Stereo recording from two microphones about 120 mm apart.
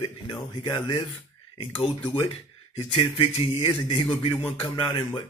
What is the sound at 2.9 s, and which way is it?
Speech, 50° left (ahead or behind).